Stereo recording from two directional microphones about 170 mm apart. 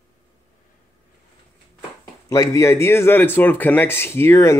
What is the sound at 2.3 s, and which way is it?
Speech, 20° left (ahead or behind).